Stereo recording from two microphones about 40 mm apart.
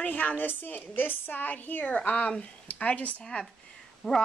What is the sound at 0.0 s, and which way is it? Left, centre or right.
A woman's voice, left.